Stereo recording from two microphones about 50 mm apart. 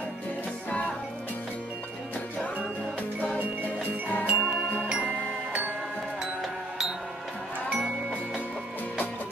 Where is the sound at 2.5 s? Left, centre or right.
Right.